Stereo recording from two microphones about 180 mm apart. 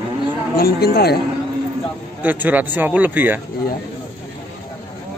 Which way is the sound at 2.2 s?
10° right (ahead or behind).